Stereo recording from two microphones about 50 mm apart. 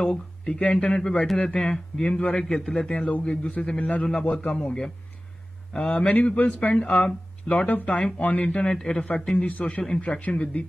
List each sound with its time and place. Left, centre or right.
0.1 s a man's voice: left
5.9 s speech: left
6.8 s speech: centre
7.4 s speech: left
7.9 s speech: centre
8.6 s a man's voice: centre
9.4 s speech: left